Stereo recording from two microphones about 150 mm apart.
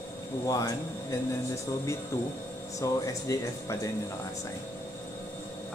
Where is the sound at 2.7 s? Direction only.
20° left (ahead or behind).